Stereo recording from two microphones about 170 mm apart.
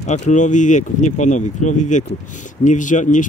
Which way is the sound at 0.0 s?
45° left (ahead or behind).